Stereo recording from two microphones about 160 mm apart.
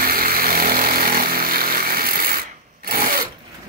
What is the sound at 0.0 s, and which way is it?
Vehicle, 65° right (ahead or behind).